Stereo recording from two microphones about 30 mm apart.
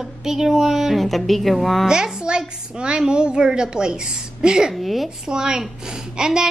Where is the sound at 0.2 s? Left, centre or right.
Centre.